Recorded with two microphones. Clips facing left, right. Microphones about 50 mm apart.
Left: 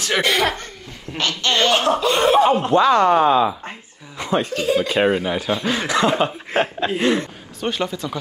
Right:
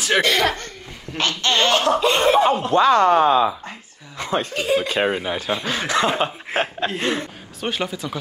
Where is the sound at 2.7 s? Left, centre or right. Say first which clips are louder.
Right 1 dB; right.